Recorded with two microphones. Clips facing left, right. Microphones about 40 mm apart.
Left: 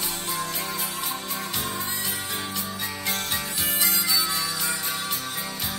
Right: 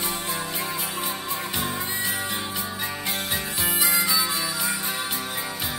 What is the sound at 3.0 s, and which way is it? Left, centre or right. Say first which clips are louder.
Music: left 1 dB; centre.